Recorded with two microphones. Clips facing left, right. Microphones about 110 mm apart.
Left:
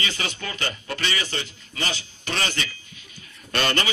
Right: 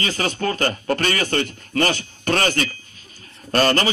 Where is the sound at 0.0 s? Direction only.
45° right (ahead or behind).